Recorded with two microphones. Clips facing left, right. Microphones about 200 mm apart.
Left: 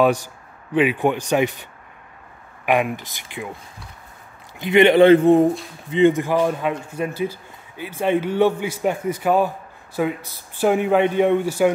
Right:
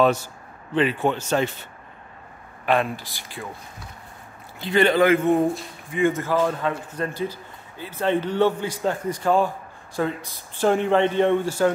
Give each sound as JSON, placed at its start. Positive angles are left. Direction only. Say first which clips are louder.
{"t": 0.0, "sound": "speech", "louder": "left 2 dB", "side_deg": 15}
{"t": 4.6, "sound": "a man's voice", "louder": "left 6 dB", "side_deg": 20}
{"t": 5.9, "sound": "speech", "louder": "left 6 dB", "side_deg": 20}